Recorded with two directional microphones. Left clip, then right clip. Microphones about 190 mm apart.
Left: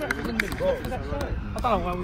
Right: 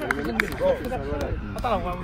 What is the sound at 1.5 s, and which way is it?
Speech, 40° left (ahead or behind).